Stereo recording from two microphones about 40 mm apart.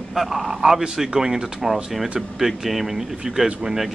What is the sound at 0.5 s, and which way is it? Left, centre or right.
A man's voice, centre.